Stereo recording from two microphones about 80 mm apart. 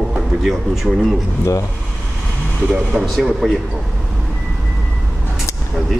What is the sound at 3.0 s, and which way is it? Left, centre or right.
Speech, centre.